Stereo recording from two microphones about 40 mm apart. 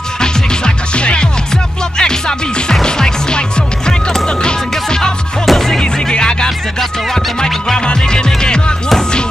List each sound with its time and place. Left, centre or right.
0.2 s music: left
5.4 s music: centre
5.9 s music: centre
7.8 s music: left